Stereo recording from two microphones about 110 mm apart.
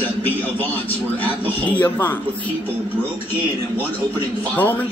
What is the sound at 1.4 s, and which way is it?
Speech, 15° left (ahead or behind).